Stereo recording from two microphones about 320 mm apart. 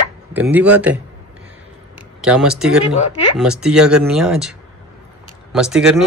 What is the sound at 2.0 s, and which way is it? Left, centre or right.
Speech, centre.